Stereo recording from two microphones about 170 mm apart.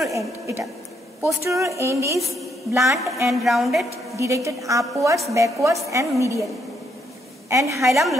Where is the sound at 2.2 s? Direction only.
Centre (ahead or behind).